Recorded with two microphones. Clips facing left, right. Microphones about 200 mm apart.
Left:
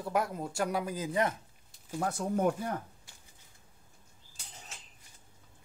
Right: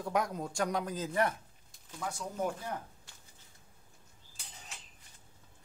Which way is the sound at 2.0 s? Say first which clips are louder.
Left 6 dB; 60° left (ahead or behind).